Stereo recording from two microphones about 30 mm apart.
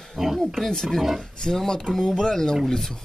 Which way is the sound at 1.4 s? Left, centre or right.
Left.